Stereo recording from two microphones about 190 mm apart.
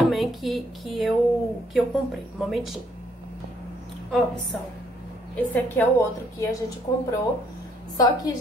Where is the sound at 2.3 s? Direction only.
Centre (ahead or behind).